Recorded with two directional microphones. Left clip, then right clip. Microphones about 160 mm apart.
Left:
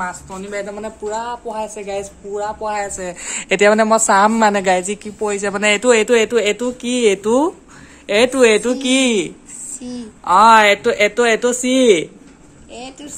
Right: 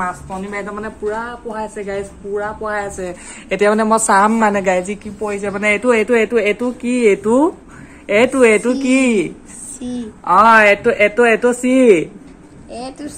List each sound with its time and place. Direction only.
0.0 s speech: 15° left (ahead or behind)
3.4 s speech: 35° left (ahead or behind)
5.2 s speech: 40° left (ahead or behind); by 9.3 s 25° left (ahead or behind)
9.8 s a woman's voice: centre (ahead or behind)
10.2 s speech: 30° left (ahead or behind)